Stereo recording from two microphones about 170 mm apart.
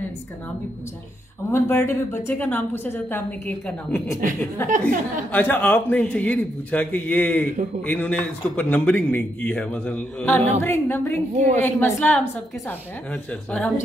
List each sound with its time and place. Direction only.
1.5 s a woman's voice: 15° left (ahead or behind)
11.3 s a woman's voice: 45° right (ahead or behind)
11.6 s a woman's voice: 10° left (ahead or behind)